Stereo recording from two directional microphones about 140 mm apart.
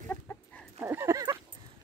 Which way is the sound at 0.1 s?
10° left (ahead or behind).